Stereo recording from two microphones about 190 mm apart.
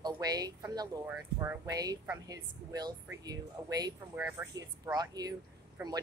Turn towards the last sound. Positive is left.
turn(degrees=-20)  # may be behind; listen again after turning